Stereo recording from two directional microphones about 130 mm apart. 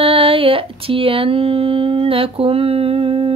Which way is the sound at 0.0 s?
45° right (ahead or behind).